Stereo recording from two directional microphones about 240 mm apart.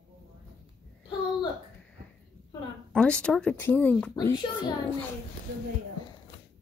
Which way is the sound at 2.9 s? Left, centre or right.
Centre.